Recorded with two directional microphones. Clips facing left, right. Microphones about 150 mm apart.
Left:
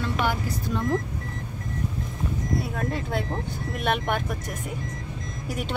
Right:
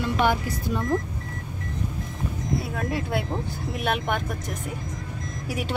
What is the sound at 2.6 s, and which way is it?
Speech, 10° right (ahead or behind).